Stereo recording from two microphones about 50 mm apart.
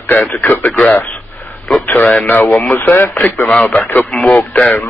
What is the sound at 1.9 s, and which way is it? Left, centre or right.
Speech, left.